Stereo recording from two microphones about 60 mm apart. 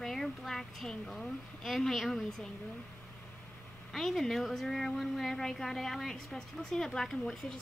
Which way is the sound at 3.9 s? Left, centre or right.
Centre.